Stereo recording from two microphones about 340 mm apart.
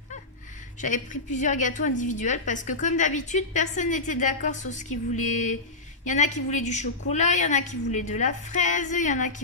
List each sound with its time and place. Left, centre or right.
0.7 s a woman's voice: left